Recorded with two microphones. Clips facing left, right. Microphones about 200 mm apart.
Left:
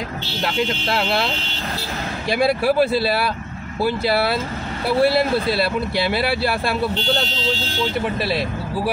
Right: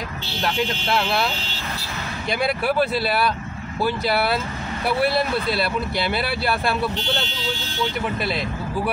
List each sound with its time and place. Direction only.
0.4 s speech: 25° left (ahead or behind)
2.3 s speech: 30° left (ahead or behind)